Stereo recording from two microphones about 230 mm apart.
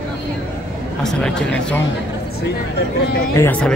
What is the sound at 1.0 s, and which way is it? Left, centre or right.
Speech, centre.